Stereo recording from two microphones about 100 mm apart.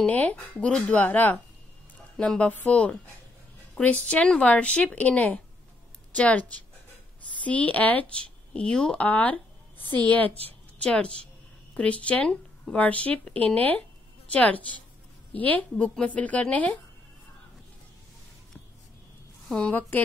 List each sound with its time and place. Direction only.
0.0 s a woman's voice: 15° left (ahead or behind)